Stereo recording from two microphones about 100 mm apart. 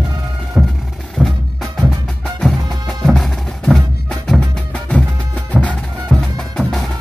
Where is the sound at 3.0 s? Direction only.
Centre (ahead or behind).